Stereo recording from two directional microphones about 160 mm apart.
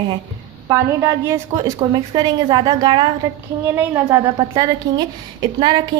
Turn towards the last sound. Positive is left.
turn(degrees=-25)  # may be behind; listen again after turning